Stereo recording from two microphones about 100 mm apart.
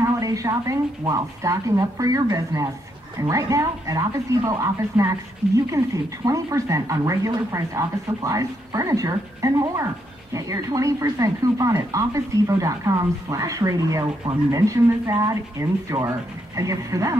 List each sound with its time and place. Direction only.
0.0 s speech: 35° right (ahead or behind)